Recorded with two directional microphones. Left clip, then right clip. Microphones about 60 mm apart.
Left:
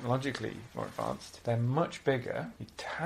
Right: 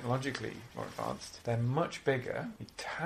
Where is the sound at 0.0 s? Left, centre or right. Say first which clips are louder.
Left 2 dB; centre.